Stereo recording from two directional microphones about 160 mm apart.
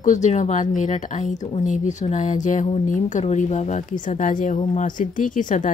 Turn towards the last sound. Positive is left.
turn(degrees=50)  # may be behind; listen again after turning